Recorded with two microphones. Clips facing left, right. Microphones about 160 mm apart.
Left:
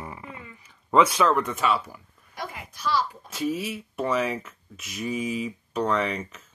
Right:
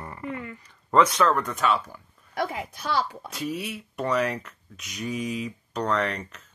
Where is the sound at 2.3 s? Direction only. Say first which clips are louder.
Right 8 dB; 60° right (ahead or behind).